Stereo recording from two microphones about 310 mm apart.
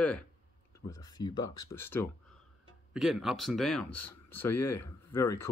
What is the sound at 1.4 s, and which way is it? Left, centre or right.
Speech, left.